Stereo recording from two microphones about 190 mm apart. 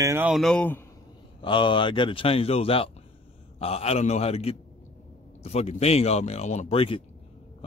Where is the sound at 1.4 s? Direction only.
25° left (ahead or behind).